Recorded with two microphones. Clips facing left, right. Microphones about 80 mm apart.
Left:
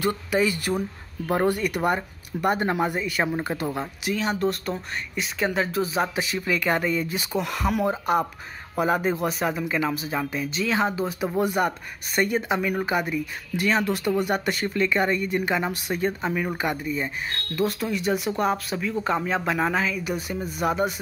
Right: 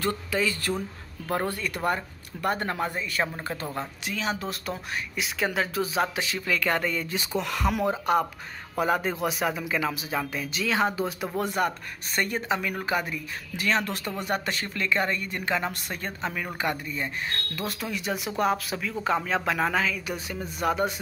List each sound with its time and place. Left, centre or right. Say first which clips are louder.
0.0 s speech: left 4 dB; centre
4.0 s speech: left 7 dB; centre